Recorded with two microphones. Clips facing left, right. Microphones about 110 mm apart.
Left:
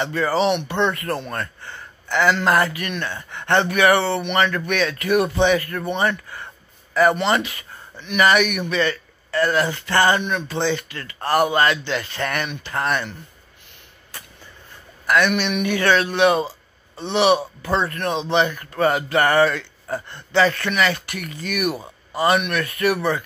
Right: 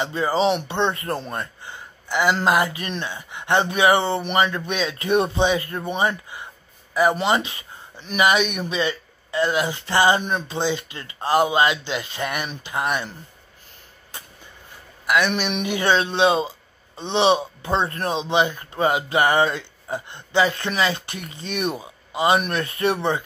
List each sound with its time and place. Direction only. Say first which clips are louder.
0.0 s speech: left 1 dB; 20° right (ahead or behind)
1.3 s speech: left 1 dB; 15° right (ahead or behind)
3.1 s speech: left 1 dB; 15° right (ahead or behind)
7.3 s speech: left 1 dB; 25° right (ahead or behind)
14.1 s vehicle: even; 20° right (ahead or behind)
15.5 s speech: even; 20° right (ahead or behind)
18.2 s speech: left 1 dB; 15° right (ahead or behind)
22.4 s speech: left 1 dB; 30° right (ahead or behind)